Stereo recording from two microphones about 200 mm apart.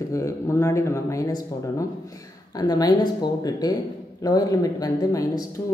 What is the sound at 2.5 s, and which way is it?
A woman's voice, 20° left (ahead or behind).